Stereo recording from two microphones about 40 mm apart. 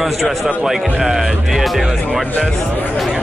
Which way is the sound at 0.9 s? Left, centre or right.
Centre.